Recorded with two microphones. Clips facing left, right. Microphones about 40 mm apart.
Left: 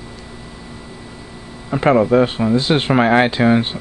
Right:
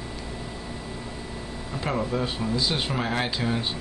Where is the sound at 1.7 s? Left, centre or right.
Left.